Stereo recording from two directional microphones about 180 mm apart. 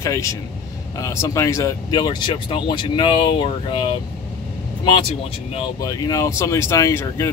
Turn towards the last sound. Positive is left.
turn(degrees=15)  # may be behind; listen again after turning